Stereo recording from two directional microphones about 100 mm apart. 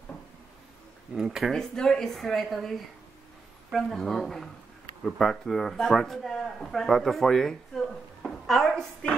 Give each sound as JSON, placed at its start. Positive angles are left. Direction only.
{"t": 1.1, "sound": "speech", "side_deg": -5}